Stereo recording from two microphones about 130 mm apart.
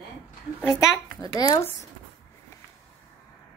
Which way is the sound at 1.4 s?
25° left (ahead or behind).